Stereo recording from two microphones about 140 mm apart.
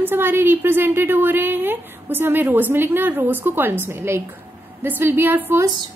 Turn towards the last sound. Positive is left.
turn(degrees=-15)  # may be behind; listen again after turning